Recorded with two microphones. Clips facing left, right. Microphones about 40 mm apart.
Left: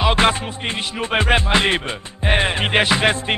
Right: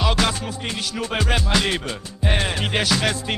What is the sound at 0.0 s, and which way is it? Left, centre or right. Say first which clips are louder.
Music: left 5 dB; left.